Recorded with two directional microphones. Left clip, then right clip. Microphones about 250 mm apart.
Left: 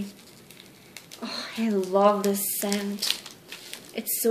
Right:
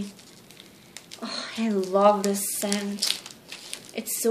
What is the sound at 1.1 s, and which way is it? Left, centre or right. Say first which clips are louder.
Speech: right 1 dB; centre.